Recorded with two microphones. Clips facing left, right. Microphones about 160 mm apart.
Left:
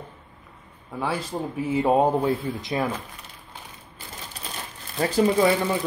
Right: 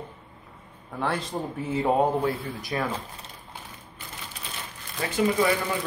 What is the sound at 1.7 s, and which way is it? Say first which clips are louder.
Speech: left 3 dB; 20° left (ahead or behind).